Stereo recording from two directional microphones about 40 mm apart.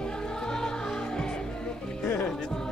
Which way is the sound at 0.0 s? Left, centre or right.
Centre.